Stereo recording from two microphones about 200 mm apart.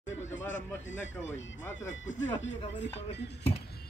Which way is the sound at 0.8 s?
70° left (ahead or behind).